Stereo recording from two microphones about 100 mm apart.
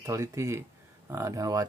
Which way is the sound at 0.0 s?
30° right (ahead or behind).